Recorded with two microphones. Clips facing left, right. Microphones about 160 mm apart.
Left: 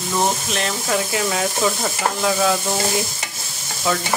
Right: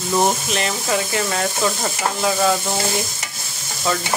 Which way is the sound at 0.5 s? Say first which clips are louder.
Right 1 dB; centre (ahead or behind).